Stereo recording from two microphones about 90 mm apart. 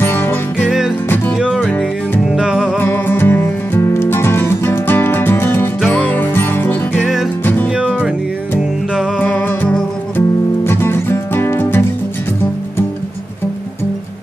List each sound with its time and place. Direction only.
0.0 s music: 25° left (ahead or behind)
0.7 s music: 5° right (ahead or behind)
1.0 s music: 25° left (ahead or behind)
1.4 s music: 5° right (ahead or behind)
1.7 s music: 15° left (ahead or behind)
2.2 s music: 5° right (ahead or behind)
2.8 s music: 25° left (ahead or behind)
7.7 s music: 10° right (ahead or behind)
9.2 s music: 20° left (ahead or behind)